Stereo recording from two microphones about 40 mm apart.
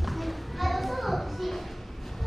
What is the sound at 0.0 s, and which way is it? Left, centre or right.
Children playing, centre.